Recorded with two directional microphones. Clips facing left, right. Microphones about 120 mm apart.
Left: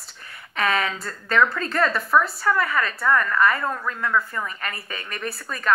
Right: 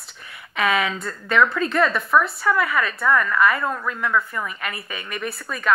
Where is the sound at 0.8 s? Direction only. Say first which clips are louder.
Right 2 dB; 35° left (ahead or behind).